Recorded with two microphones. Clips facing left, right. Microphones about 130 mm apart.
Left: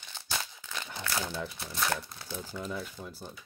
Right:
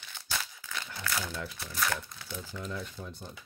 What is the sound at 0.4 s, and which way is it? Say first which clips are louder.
Crumpling: even; 20° left (ahead or behind).